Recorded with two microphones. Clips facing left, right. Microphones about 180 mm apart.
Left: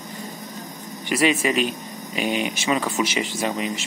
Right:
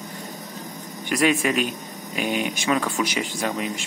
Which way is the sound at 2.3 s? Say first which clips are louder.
Right 1 dB; 50° right (ahead or behind).